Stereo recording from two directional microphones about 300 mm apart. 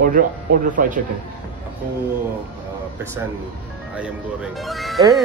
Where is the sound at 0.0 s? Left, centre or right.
Right.